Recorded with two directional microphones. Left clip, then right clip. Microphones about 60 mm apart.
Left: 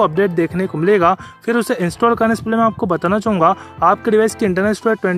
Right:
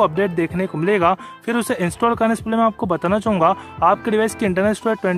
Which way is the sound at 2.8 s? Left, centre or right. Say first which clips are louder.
Left 3 dB; left.